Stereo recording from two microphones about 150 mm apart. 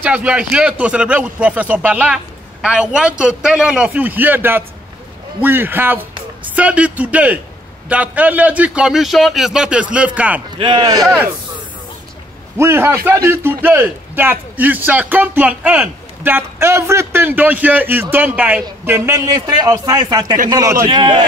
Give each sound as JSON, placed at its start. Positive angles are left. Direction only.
{"t": 0.0, "sound": "a man's voice", "side_deg": -10}
{"t": 10.6, "sound": "a man's voice", "side_deg": -30}
{"t": 12.5, "sound": "a man's voice", "side_deg": -15}